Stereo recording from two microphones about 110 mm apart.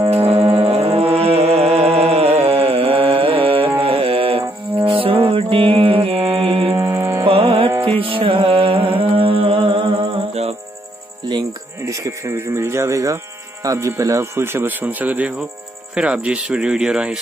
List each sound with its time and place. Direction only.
0.2 s music: 65° right (ahead or behind)
6.1 s music: 15° right (ahead or behind)
6.4 s mantra: 55° right (ahead or behind)
6.8 s music: 20° right (ahead or behind)
7.2 s music: 55° right (ahead or behind)
11.2 s music: 35° right (ahead or behind)
13.7 s speech: 25° right (ahead or behind); by 17.2 s 5° right (ahead or behind)